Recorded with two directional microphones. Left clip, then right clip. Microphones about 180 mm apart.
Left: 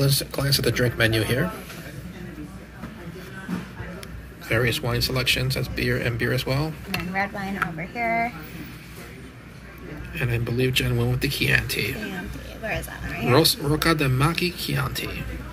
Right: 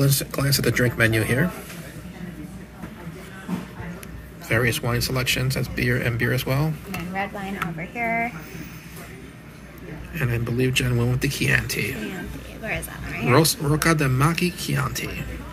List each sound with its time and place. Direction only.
0.0 s speech: 5° right (ahead or behind)
4.5 s speech: centre (ahead or behind)
7.7 s speech: 5° left (ahead or behind)
10.1 s speech: 5° left (ahead or behind)